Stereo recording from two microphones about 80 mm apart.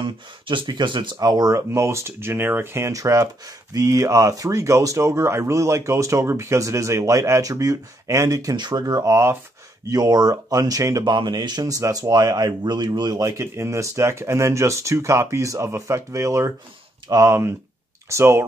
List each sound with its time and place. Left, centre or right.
0.0 s speech: right
1.1 s speech: right
1.7 s speech: right
2.9 s speech: right
8.5 s speech: right
9.8 s speech: right
11.1 s speech: right
12.6 s a man's voice: right
13.2 s speech: right